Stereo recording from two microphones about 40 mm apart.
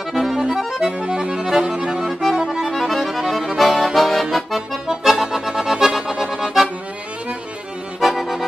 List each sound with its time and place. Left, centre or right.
0.1 s accordion: centre
0.7 s accordion: centre
2.7 s accordion: centre
6.4 s accordion: centre
8.0 s music: centre